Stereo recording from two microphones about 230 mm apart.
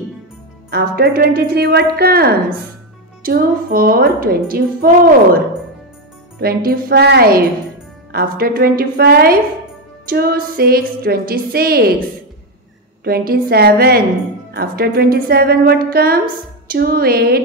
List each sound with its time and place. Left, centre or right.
0.7 s a woman's voice: right
6.4 s a woman's voice: right
13.0 s a woman's voice: right